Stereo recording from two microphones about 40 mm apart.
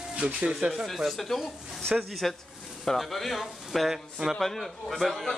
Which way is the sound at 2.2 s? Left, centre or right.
Centre.